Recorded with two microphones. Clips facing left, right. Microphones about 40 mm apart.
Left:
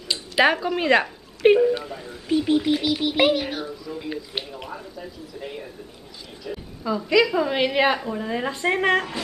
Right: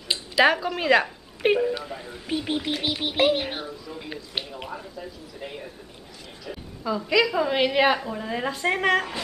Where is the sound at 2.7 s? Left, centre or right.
Right.